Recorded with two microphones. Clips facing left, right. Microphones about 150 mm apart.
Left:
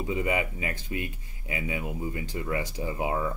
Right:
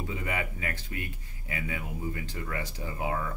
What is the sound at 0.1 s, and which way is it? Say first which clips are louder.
Speech: left 9 dB; 15° left (ahead or behind).